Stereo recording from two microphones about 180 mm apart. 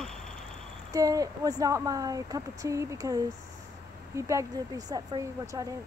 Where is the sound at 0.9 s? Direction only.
20° right (ahead or behind).